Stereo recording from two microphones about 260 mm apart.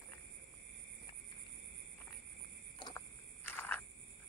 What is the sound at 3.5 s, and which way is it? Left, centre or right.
Frog, centre.